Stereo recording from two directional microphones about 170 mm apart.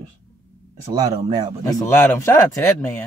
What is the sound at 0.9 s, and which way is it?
Speech, 20° right (ahead or behind).